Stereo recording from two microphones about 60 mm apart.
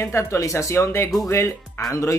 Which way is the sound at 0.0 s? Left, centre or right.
Left.